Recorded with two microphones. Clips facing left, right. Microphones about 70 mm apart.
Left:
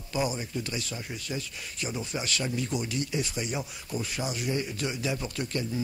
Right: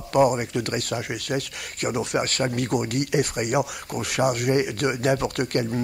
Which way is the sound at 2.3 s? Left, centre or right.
Right.